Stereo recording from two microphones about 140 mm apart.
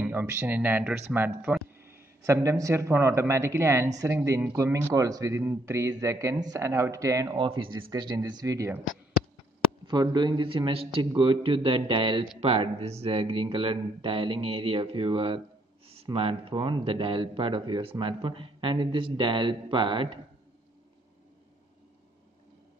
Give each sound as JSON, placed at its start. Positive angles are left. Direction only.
{"t": 0.0, "sound": "a man's voice", "side_deg": -15}
{"t": 7.3, "sound": "speech", "side_deg": -40}
{"t": 9.8, "sound": "speech", "side_deg": -35}